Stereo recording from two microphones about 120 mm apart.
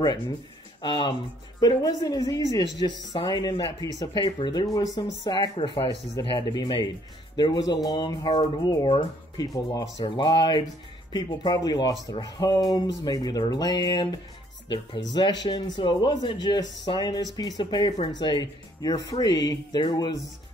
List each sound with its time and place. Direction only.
0.8 s speech: 40° left (ahead or behind)
9.5 s speech: 30° left (ahead or behind)
10.0 s speech: 40° left (ahead or behind)